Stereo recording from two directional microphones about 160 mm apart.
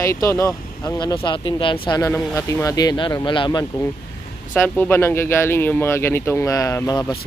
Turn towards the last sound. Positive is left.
turn(degrees=25)  # may be behind; listen again after turning